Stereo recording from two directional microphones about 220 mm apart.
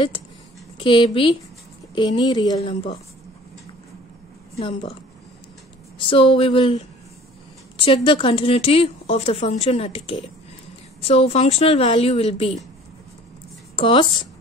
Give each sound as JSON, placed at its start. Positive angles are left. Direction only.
{"t": 0.7, "sound": "speech", "side_deg": 20}
{"t": 4.6, "sound": "speech", "side_deg": 25}
{"t": 5.9, "sound": "speech", "side_deg": 25}
{"t": 13.7, "sound": "speech", "side_deg": 25}